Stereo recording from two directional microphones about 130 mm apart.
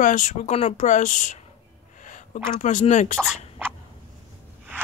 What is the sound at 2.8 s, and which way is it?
Speech, 65° left (ahead or behind).